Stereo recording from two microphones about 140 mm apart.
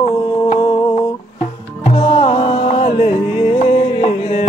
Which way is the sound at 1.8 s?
45° left (ahead or behind).